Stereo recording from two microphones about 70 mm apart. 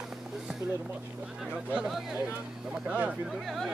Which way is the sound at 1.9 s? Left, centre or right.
Centre.